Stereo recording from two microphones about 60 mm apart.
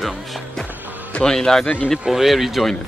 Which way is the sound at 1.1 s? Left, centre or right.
Centre.